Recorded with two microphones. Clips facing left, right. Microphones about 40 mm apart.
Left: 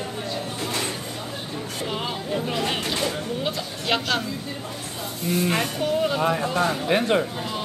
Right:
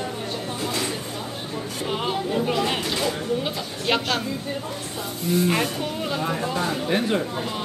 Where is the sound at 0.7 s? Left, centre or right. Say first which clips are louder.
Even; left.